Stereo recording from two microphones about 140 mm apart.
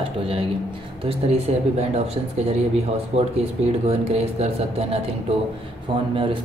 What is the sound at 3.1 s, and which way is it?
Speech, 45° right (ahead or behind).